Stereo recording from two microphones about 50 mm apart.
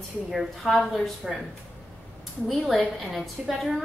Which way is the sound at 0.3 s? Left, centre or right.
Centre.